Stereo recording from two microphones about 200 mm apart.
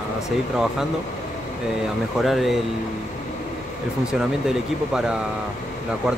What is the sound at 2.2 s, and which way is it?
Speech, centre (ahead or behind).